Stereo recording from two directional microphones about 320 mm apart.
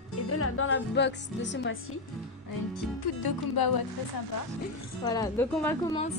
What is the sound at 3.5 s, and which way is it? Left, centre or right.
Speech, left.